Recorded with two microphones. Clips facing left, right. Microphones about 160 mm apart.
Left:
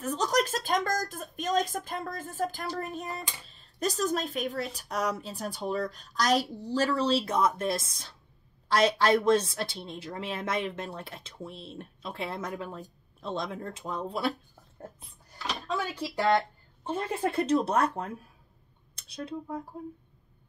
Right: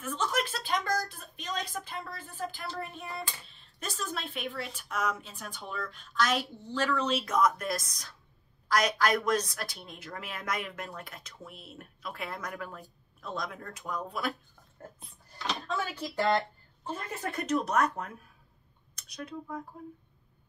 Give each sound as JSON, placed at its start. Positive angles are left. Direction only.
{"t": 0.0, "sound": "a woman's voice", "side_deg": 40}
{"t": 14.8, "sound": "a sound", "side_deg": 0}
{"t": 15.7, "sound": "speech", "side_deg": 10}
{"t": 16.8, "sound": "a woman's voice", "side_deg": 30}